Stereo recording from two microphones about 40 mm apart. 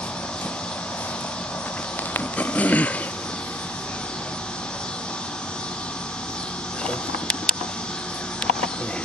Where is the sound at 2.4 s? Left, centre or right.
Left.